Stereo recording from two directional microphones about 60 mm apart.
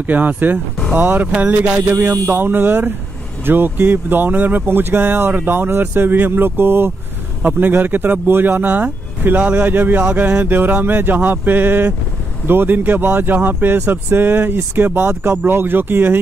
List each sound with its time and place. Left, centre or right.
0.0 s speech: right